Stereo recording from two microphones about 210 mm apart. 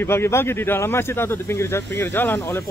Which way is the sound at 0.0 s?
10° left (ahead or behind).